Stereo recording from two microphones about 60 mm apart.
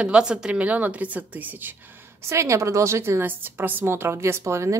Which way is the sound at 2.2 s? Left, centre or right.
Right.